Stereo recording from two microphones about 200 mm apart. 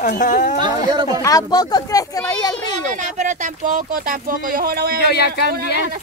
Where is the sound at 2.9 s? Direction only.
40° right (ahead or behind).